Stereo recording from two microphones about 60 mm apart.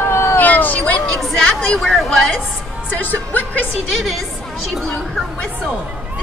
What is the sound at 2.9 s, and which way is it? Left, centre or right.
Speech, left.